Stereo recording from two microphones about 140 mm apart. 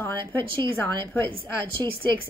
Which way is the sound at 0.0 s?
15° left (ahead or behind).